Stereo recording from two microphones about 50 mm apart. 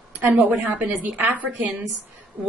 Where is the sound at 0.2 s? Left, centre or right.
Right.